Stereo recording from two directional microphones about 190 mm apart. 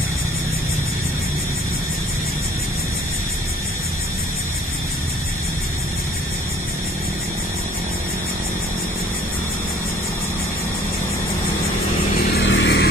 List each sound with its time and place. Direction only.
12.4 s vehicle: 70° left (ahead or behind)